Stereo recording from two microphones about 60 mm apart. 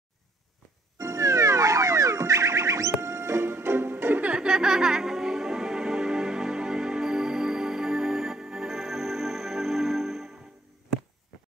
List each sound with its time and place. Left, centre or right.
0.9 s music: right
4.3 s music: centre